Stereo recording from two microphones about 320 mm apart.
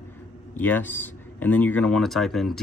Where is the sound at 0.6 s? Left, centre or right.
Centre.